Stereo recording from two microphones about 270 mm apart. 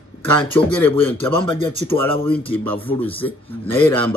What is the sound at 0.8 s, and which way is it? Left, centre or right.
Speech, centre.